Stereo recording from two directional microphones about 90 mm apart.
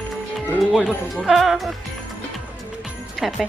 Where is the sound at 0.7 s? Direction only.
Centre (ahead or behind).